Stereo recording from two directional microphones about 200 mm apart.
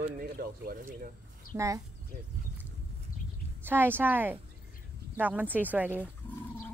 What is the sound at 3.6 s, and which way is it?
Speech, 10° right (ahead or behind).